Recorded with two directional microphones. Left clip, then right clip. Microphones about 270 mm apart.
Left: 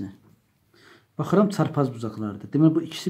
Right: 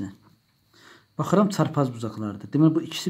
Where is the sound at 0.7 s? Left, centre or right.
Centre.